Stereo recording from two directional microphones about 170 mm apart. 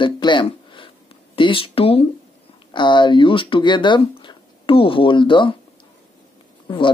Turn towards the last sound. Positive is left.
turn(degrees=30)  # may be behind; listen again after turning